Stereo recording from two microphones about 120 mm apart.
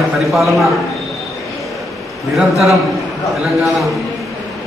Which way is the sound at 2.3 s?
Centre (ahead or behind).